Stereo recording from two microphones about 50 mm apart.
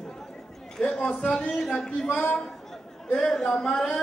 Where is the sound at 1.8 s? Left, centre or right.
Centre.